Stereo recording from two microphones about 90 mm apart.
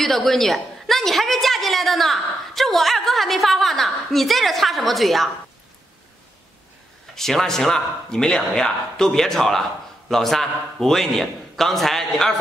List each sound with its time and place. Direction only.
0.0 s a woman's voice: 5° left (ahead or behind)
7.2 s a woman's voice: 5° left (ahead or behind)